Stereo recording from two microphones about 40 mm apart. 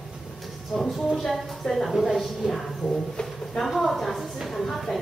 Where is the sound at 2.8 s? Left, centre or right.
Centre.